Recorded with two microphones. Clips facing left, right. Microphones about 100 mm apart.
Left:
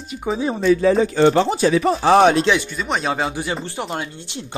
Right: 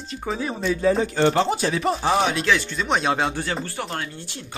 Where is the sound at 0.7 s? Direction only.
90° left.